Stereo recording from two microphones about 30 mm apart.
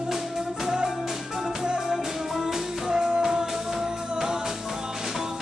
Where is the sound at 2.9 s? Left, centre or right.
Right.